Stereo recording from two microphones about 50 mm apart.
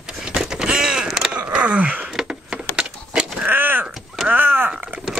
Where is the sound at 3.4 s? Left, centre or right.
Right.